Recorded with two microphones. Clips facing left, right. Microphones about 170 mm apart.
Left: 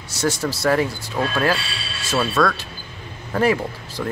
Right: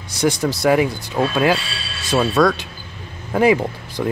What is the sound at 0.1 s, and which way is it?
Speech, 15° right (ahead or behind).